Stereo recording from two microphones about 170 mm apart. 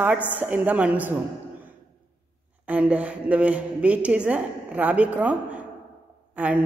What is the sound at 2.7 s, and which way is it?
A man's voice, 10° right (ahead or behind).